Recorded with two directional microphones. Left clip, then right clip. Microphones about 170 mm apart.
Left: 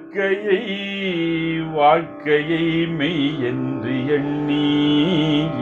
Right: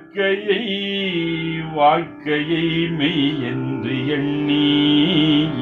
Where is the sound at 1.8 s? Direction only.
25° left (ahead or behind).